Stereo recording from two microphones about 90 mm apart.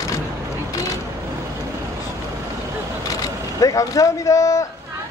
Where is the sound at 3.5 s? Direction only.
40° left (ahead or behind).